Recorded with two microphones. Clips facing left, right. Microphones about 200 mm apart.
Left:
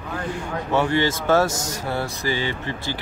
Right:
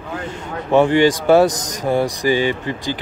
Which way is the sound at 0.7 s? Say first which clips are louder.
Right 8 dB; 15° right (ahead or behind).